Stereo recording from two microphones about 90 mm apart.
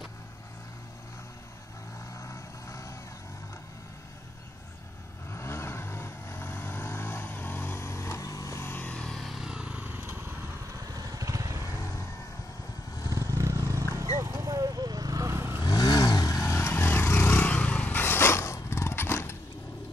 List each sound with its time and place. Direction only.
2.1 s vehicle: 30° left (ahead or behind)
5.3 s vehicle: 30° left (ahead or behind)
9.0 s motorcycle: 5° left (ahead or behind); by 10.3 s 25° right (ahead or behind)
11.0 s vehicle: 40° right (ahead or behind)
13.1 s vehicle: 35° right (ahead or behind)
15.6 s vehicle: 50° left (ahead or behind); by 19.3 s 25° left (ahead or behind)